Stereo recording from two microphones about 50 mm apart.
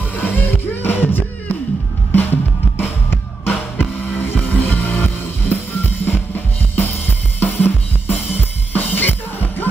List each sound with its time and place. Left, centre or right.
0.1 s music: left
2.8 s music: left